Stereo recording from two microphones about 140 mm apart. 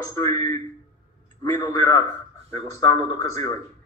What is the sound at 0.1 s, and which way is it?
A man's voice, 20° left (ahead or behind).